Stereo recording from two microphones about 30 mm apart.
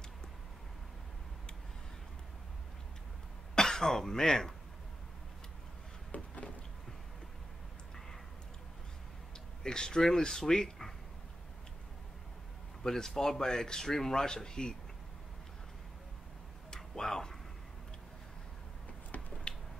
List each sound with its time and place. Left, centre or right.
3.5 s speech: centre
6.1 s a sound: left
9.6 s speech: left
12.8 s speech: centre
16.7 s tick-tock: left
19.1 s finger snapping: left